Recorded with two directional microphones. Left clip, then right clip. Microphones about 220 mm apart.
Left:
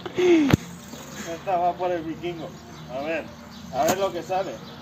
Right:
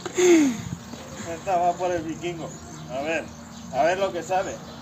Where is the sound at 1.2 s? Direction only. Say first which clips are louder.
Right 1 dB; 5° right (ahead or behind).